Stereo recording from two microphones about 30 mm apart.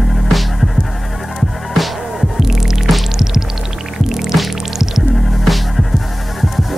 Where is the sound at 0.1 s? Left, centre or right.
Centre.